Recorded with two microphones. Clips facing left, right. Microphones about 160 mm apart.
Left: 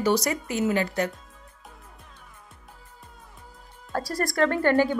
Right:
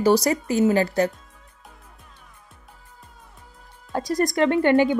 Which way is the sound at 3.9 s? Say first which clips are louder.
Right 5 dB; 20° right (ahead or behind).